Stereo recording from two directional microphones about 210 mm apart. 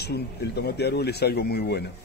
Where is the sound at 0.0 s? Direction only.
50° left (ahead or behind).